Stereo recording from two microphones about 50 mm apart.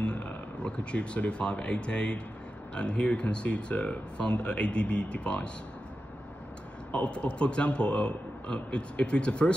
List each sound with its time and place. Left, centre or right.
0.0 s speech: left
6.9 s speech: left